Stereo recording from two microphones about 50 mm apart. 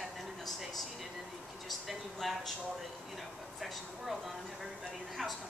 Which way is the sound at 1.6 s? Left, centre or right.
Centre.